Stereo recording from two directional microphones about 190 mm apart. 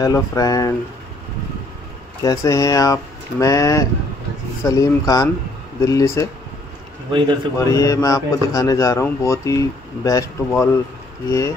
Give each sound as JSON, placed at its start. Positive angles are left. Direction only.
{"t": 0.0, "sound": "speech", "side_deg": 20}
{"t": 2.2, "sound": "a man's voice", "side_deg": 15}
{"t": 7.1, "sound": "a man's voice", "side_deg": -25}
{"t": 7.5, "sound": "a man's voice", "side_deg": 15}